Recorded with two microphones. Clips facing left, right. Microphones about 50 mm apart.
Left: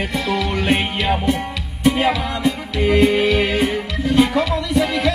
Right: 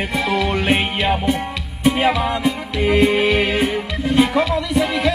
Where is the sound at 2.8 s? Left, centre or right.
Centre.